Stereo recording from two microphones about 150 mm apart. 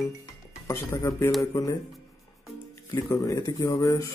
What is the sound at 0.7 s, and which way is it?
Speech, 20° left (ahead or behind).